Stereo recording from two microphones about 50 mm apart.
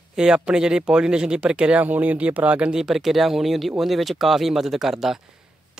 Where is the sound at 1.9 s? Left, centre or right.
Right.